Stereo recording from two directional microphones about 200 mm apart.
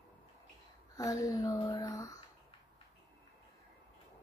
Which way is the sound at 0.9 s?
15° left (ahead or behind).